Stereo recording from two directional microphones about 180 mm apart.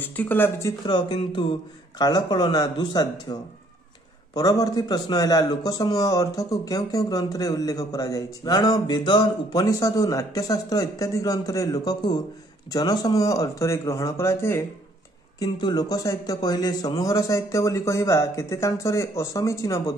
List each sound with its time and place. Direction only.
0.1 s a man's voice: 10° left (ahead or behind)
0.8 s a man's voice: 25° left (ahead or behind)